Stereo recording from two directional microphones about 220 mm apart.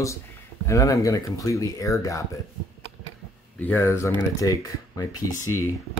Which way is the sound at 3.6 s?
10° left (ahead or behind).